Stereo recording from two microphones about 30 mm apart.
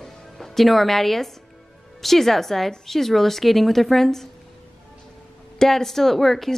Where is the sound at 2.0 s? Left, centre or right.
Centre.